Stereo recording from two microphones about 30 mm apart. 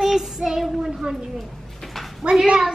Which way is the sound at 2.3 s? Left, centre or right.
Right.